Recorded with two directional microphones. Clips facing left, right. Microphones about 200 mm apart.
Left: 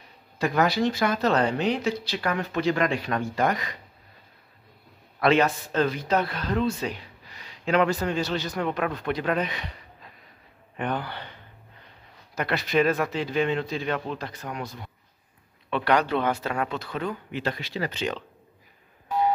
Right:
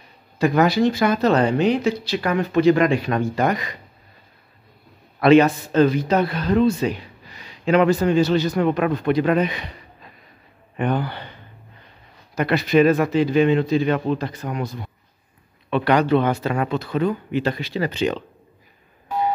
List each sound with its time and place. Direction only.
0.4 s speech: 15° right (ahead or behind)
5.2 s speech: 10° right (ahead or behind)
10.8 s speech: 10° right (ahead or behind)
12.4 s speech: 5° right (ahead or behind)
15.7 s speech: 5° right (ahead or behind)
17.6 s speech: 30° right (ahead or behind)